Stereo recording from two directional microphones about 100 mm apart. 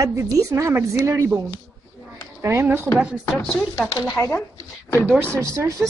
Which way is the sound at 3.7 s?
35° left (ahead or behind).